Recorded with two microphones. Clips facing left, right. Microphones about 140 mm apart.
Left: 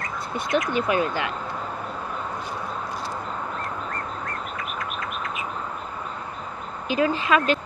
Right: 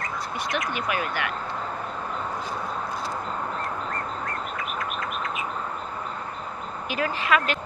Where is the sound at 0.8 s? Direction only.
25° left (ahead or behind).